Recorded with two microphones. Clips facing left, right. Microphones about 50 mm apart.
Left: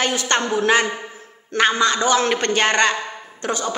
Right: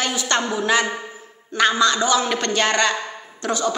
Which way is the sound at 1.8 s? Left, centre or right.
Left.